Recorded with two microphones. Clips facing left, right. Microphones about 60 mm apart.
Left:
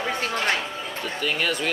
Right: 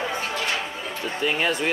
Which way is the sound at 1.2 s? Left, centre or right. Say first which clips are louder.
Right 2 dB; right.